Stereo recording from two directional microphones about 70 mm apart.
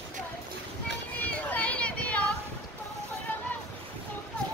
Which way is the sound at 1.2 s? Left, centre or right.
Left.